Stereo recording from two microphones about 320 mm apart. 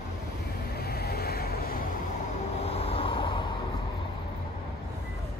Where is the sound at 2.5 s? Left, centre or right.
Centre.